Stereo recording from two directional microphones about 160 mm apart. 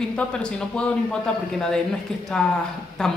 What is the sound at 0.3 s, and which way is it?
A woman's voice, 5° left (ahead or behind).